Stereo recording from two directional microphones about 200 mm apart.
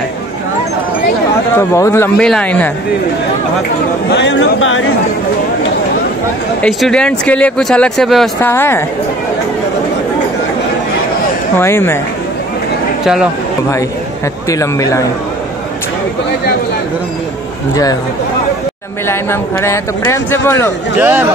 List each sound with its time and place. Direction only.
1.6 s speech: 15° left (ahead or behind)
4.1 s speech: 65° left (ahead or behind)
6.6 s speech: 5° left (ahead or behind)
11.5 s speech: 10° left (ahead or behind)
13.0 s speech: 5° right (ahead or behind)
14.5 s speech: 15° left (ahead or behind)
19.6 s speech: 15° left (ahead or behind)
21.0 s speech: 10° right (ahead or behind)